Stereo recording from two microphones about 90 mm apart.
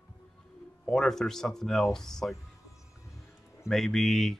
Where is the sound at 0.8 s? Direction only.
5° left (ahead or behind).